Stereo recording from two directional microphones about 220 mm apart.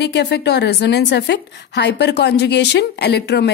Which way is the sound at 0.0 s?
50° left (ahead or behind).